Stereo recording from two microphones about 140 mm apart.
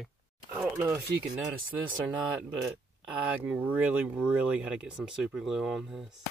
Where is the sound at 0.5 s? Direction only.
20° right (ahead or behind).